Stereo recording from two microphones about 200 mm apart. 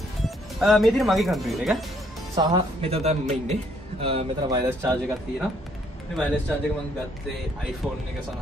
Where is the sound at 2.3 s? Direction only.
20° right (ahead or behind).